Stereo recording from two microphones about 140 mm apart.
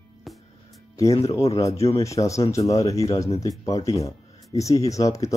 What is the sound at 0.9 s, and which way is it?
Speech, 25° left (ahead or behind).